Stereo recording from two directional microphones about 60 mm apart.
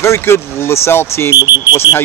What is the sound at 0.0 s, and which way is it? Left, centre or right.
Speech, left.